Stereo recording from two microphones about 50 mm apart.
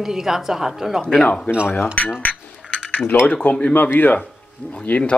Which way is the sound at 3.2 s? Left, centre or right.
Left.